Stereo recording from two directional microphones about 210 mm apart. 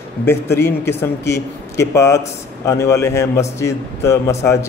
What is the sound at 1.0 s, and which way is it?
Speech, 15° left (ahead or behind).